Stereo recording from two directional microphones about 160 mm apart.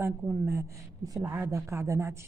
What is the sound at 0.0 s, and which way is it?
Speech, 10° right (ahead or behind).